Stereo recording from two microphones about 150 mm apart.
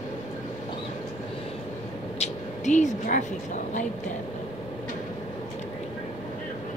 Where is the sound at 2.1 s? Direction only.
50° left (ahead or behind).